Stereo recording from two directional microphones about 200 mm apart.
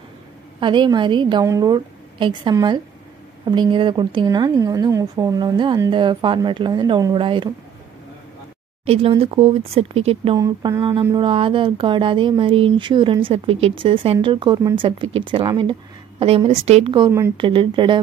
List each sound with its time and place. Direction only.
0.6 s a woman's voice: 25° right (ahead or behind)
8.8 s a woman's voice: 30° right (ahead or behind)
10.3 s a woman's voice: 15° right (ahead or behind)